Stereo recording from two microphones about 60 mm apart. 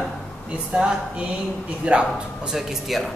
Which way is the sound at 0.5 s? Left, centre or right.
Centre.